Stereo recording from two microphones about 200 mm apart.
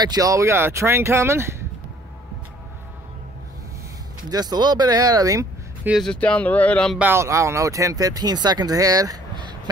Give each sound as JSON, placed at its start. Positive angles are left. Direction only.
{"t": 0.0, "sound": "speech", "side_deg": -20}
{"t": 4.3, "sound": "speech", "side_deg": -20}
{"t": 5.9, "sound": "speech", "side_deg": 0}
{"t": 7.0, "sound": "speech", "side_deg": -10}